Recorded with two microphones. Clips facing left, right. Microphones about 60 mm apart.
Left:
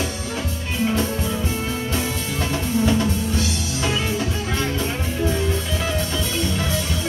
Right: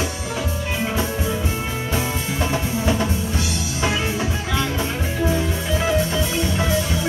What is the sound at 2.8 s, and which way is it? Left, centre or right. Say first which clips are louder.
Drum kit: left 2 dB; centre.